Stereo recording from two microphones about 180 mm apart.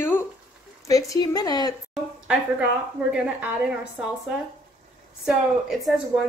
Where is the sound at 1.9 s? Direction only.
5° right (ahead or behind).